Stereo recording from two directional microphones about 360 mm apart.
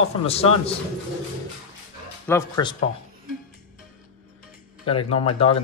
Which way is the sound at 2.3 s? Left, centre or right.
Centre.